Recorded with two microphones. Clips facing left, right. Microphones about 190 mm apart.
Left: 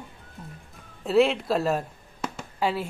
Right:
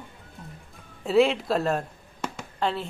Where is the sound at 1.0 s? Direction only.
Centre (ahead or behind).